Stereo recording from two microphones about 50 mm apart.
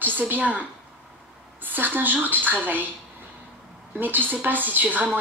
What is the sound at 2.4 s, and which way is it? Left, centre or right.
Speech, right.